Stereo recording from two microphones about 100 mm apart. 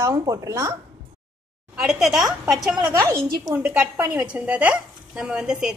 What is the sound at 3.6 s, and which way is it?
A woman's voice, 15° right (ahead or behind).